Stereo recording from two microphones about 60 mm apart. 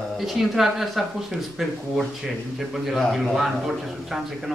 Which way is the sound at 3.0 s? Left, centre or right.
Centre.